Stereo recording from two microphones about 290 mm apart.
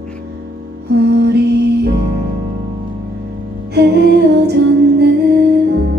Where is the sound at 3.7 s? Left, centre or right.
Right.